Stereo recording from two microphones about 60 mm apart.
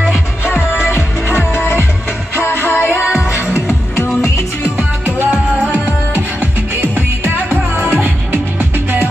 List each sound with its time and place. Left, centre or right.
0.5 s music: left
4.7 s music: right
7.5 s music: centre
7.9 s music: right